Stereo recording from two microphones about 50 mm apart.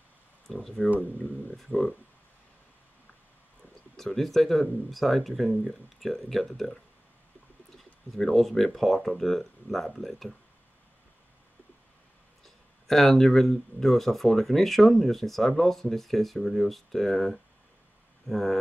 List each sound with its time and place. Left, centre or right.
0.5 s speech: centre
0.8 s speech: right
1.6 s speech: centre
3.9 s speech: centre
12.4 s speech: centre